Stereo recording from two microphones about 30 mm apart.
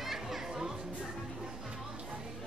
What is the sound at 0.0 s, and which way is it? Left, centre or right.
Music, centre.